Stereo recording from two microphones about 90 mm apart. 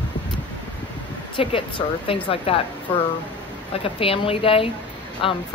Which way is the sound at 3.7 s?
90° left.